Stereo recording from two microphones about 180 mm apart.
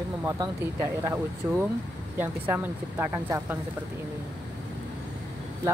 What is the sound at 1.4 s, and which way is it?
Speech, 15° right (ahead or behind).